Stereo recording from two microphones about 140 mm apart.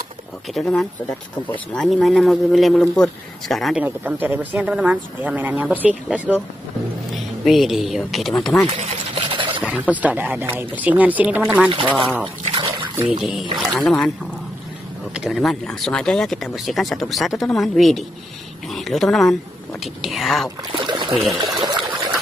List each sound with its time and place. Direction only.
0.6 s speech: centre (ahead or behind)
3.8 s speech: 15° right (ahead or behind); by 8.6 s 5° left (ahead or behind)
9.1 s a sound: 40° right (ahead or behind)
9.7 s speech: 10° right (ahead or behind)
12.5 s trickle: 30° right (ahead or behind)
13.2 s speech: 5° right (ahead or behind)
15.1 s speech: centre (ahead or behind)
20.7 s trickle: 35° right (ahead or behind)
21.4 s pour: 30° right (ahead or behind)